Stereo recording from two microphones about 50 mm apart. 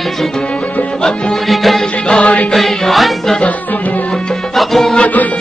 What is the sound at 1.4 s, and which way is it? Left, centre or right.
Music, centre.